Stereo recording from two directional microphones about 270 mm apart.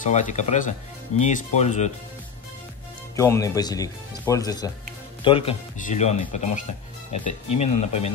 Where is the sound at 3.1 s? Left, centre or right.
Centre.